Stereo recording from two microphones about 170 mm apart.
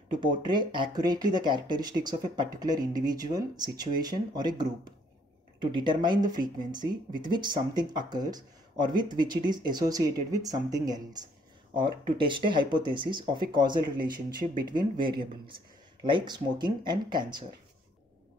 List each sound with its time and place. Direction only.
0.1 s speech: 25° right (ahead or behind)